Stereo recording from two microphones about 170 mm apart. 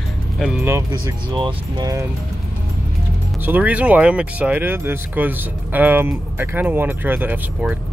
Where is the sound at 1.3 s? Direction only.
25° right (ahead or behind).